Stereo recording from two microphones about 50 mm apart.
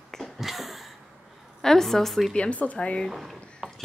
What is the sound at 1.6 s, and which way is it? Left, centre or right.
Speech, centre.